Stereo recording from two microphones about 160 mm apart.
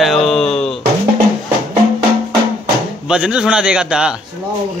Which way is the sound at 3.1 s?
5° right (ahead or behind).